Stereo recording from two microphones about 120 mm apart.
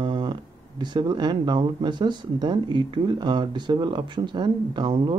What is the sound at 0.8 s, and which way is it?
Speech, 40° right (ahead or behind).